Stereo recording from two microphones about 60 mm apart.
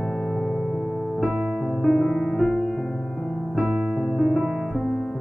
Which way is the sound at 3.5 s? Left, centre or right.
Right.